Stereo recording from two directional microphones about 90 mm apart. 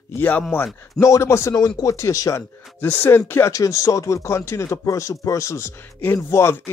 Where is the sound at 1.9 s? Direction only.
35° left (ahead or behind).